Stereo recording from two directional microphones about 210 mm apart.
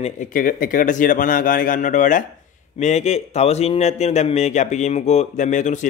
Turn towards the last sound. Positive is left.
turn(degrees=35)  # may be behind; listen again after turning